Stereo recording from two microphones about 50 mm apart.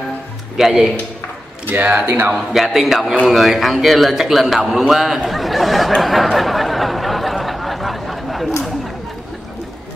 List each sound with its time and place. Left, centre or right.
0.6 s speech: centre
1.7 s speech: right
2.3 s a man's voice: centre
6.3 s a sound: centre